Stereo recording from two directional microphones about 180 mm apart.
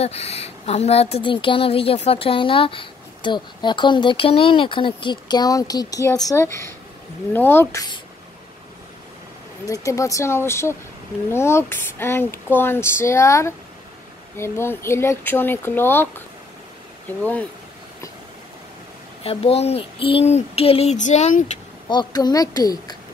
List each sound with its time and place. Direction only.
0.0 s speech: 35° left (ahead or behind); by 8.0 s 20° left (ahead or behind)
9.7 s speech: 20° left (ahead or behind)
17.2 s speech: 10° left (ahead or behind)
19.2 s speech: 35° left (ahead or behind)
21.8 s speech: 25° left (ahead or behind)